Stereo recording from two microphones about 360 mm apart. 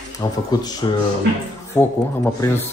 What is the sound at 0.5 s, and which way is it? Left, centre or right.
Speech, centre.